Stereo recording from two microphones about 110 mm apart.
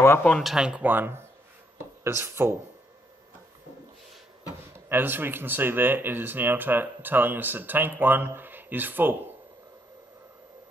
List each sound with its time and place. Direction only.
0.2 s speech: 5° left (ahead or behind); by 2.5 s 25° right (ahead or behind)
4.7 s speech: 20° right (ahead or behind)